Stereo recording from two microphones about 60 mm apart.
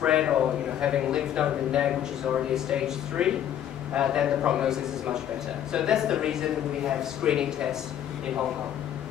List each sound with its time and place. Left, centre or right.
0.0 s a man's voice: centre